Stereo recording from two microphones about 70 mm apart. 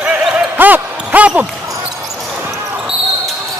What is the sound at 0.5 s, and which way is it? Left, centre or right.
Basketball bounce, right.